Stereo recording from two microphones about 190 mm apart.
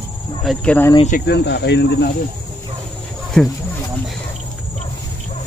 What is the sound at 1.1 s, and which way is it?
Speech, 60° left (ahead or behind).